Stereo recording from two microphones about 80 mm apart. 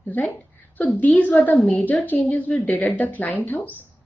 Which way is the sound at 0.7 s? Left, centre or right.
Centre.